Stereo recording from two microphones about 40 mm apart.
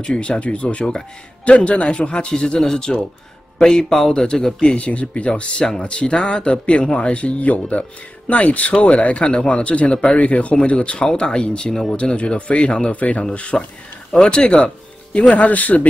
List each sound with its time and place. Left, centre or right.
0.0 s speech: left
4.6 s speech: left
11.7 s speech: centre
12.0 s speech: left
14.1 s speech: left